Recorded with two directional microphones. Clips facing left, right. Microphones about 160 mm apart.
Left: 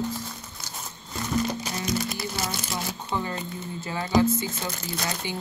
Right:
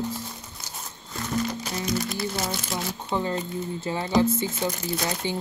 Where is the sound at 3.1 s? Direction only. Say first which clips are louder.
Right 4 dB; 25° right (ahead or behind).